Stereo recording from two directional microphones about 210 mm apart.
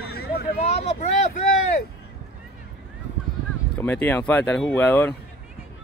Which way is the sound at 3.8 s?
10° left (ahead or behind).